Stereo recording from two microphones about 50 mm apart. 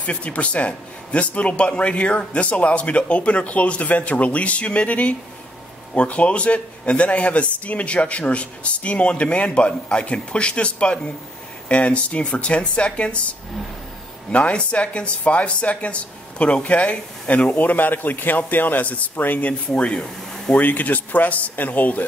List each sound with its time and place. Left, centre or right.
0.0 s speech: left
14.3 s speech: left
19.7 s speech: left
20.5 s speech: left